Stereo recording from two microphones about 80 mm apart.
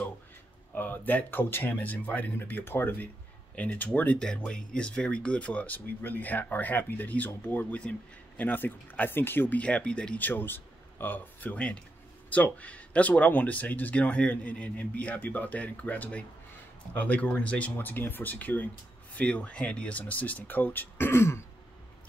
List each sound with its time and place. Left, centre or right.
0.7 s speech: left
4.2 s speech: centre; by 9.6 s left
9.6 s speech: centre; by 21.4 s left